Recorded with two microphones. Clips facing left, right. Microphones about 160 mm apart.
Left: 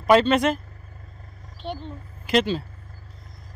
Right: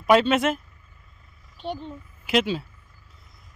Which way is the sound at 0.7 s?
70° left (ahead or behind).